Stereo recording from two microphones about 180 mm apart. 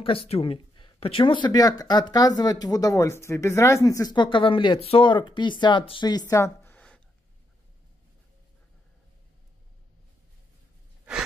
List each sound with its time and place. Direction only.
0.0 s speech: 30° left (ahead or behind); by 7.0 s 5° left (ahead or behind)